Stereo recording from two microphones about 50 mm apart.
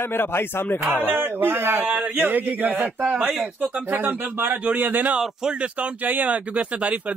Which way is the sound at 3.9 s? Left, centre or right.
Right.